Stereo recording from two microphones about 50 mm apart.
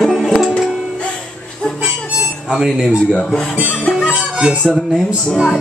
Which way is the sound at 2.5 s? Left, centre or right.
Centre.